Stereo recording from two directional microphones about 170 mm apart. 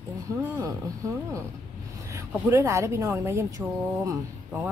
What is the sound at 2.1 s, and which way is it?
A woman's voice, 15° right (ahead or behind).